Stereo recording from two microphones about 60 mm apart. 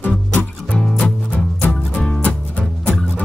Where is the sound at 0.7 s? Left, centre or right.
Centre.